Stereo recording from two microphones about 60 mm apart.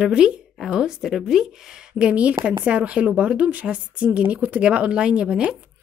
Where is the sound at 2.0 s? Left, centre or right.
Right.